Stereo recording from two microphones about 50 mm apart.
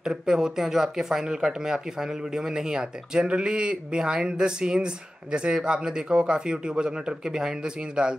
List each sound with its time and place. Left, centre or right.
0.0 s speech: centre